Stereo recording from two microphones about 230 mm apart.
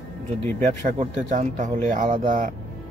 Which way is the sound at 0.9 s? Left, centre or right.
Right.